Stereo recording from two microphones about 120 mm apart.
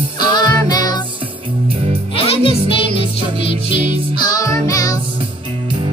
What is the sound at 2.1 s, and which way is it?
Music, 50° left (ahead or behind).